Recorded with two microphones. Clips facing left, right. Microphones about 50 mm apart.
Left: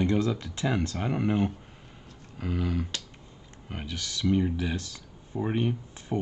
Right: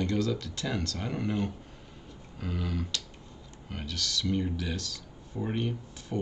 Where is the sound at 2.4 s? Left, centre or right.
Centre.